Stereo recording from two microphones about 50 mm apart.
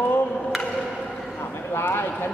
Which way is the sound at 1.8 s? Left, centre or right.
Left.